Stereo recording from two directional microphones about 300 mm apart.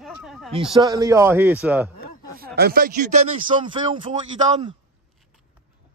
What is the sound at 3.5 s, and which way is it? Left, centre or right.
Speech, centre.